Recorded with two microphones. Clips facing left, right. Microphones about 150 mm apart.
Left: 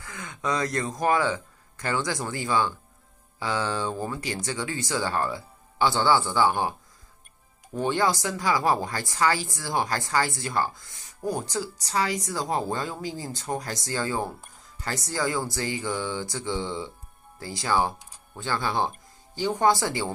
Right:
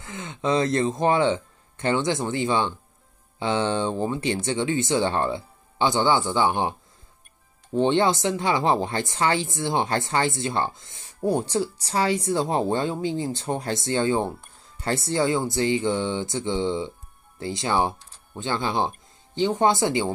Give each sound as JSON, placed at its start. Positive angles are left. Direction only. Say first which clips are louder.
{"t": 0.0, "sound": "speech", "louder": "right 4 dB", "side_deg": -25}
{"t": 7.7, "sound": "speech", "louder": "right 4 dB", "side_deg": -25}